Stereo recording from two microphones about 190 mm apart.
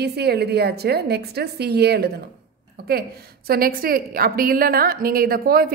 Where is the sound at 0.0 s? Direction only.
55° right (ahead or behind).